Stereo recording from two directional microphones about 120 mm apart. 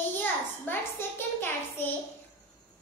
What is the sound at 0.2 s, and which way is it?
A child's voice, 15° left (ahead or behind).